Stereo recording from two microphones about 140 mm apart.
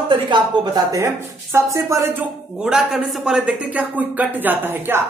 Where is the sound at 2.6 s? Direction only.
Centre (ahead or behind).